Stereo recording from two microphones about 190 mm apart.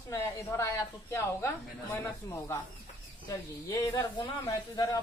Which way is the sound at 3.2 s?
15° left (ahead or behind).